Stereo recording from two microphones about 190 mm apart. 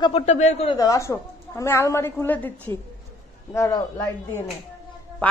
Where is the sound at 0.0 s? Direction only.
30° left (ahead or behind).